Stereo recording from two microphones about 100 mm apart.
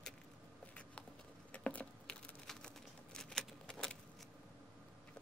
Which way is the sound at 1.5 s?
15° left (ahead or behind).